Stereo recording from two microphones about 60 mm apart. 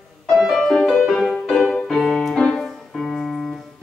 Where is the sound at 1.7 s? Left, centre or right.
Centre.